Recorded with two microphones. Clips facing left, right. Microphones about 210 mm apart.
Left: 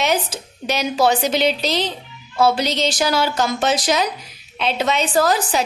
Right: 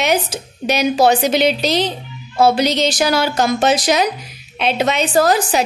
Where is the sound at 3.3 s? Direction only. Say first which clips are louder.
Right 4 dB; 70° right (ahead or behind).